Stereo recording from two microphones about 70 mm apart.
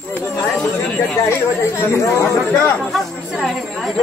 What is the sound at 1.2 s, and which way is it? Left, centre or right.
Speech, left.